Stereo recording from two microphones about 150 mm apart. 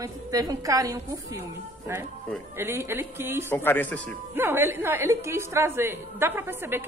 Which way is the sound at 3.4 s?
15° left (ahead or behind).